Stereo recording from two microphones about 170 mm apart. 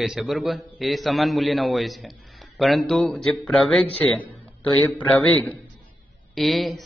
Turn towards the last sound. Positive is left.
turn(degrees=0)  # may be behind; listen again after turning